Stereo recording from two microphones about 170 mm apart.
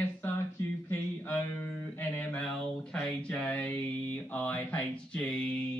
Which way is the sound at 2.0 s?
5° left (ahead or behind).